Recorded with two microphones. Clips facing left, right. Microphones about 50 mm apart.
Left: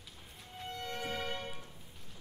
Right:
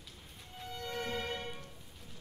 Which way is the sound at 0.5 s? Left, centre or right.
Centre.